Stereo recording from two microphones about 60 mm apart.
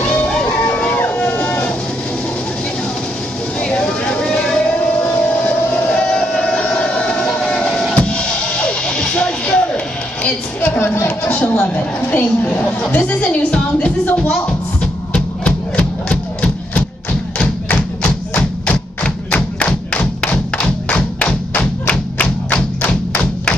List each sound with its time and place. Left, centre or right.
0.0 s music: left
0.9 s a sound: left
3.6 s vehicle: centre
4.7 s a sound: left
5.9 s train: centre
8.0 s music: centre
10.2 s a sound: left
11.7 s a woman's voice: left
15.1 s music: centre
17.4 s thump: left